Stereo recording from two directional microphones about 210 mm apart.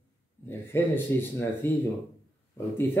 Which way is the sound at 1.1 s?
10° left (ahead or behind).